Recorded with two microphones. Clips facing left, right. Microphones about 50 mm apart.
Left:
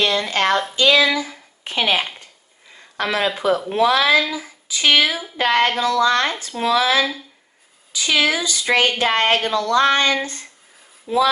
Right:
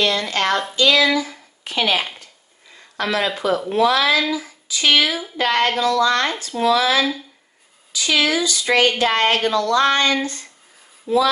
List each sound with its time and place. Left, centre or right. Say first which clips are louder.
0.0 s speech: left 1 dB; left